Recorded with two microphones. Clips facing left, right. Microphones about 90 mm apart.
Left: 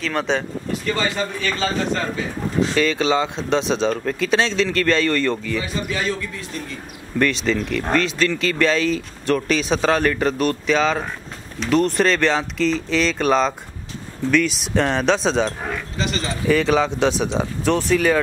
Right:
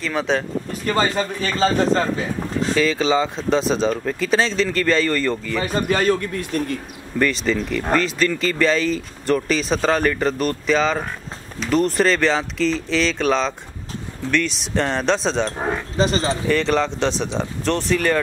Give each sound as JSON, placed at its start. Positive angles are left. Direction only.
{"t": 0.0, "sound": "speech", "side_deg": 0}
{"t": 0.8, "sound": "speech", "side_deg": -40}
{"t": 2.7, "sound": "speech", "side_deg": 0}
{"t": 5.6, "sound": "a man's voice", "side_deg": -45}
{"t": 7.2, "sound": "speech", "side_deg": 0}
{"t": 15.6, "sound": "speech", "side_deg": -30}
{"t": 16.4, "sound": "speech", "side_deg": 5}